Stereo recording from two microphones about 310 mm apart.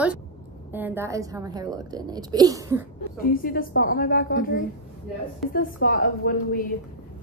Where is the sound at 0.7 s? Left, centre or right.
Centre.